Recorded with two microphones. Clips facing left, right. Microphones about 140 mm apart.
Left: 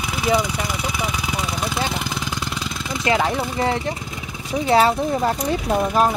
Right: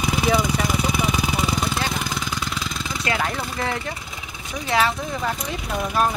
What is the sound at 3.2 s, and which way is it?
Speech, 20° left (ahead or behind).